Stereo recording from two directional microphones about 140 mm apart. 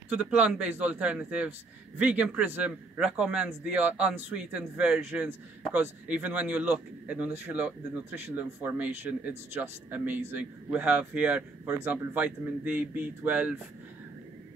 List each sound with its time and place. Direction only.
0.1 s speech: 10° right (ahead or behind)